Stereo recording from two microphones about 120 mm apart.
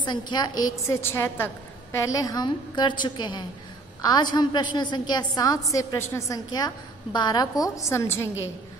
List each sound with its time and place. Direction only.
0.0 s a woman's voice: 40° left (ahead or behind); by 8.3 s 25° left (ahead or behind)